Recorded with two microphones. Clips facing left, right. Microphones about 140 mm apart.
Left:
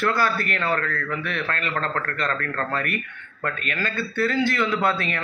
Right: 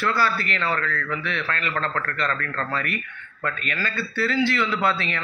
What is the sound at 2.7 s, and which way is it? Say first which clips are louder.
Speech: left 1 dB; 50° left (ahead or behind).